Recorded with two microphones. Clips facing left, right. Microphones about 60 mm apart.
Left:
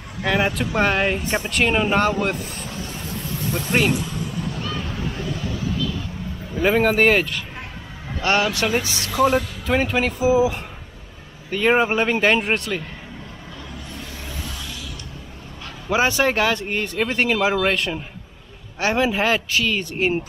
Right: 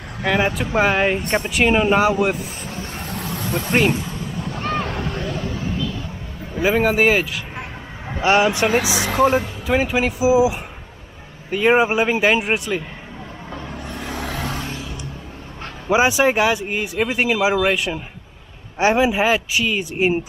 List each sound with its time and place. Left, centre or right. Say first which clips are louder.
0.2 s speech: right 1 dB; centre
3.2 s vehicle: right 2 dB; right
4.6 s vehicle: right 5 dB; right
6.6 s speech: even; centre
8.2 s speech: right 4 dB; centre
8.7 s speech: right 3 dB; right
9.7 s speech: right 2 dB; centre
13.9 s vehicle: right 9 dB; right
15.9 s speech: right 3 dB; centre